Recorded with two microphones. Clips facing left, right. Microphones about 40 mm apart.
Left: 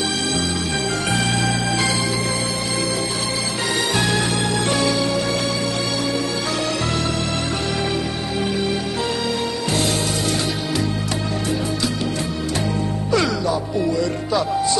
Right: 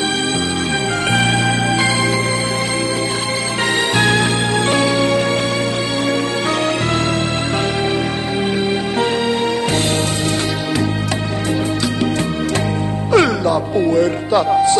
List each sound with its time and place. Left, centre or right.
3.9 s music: right
13.1 s music: right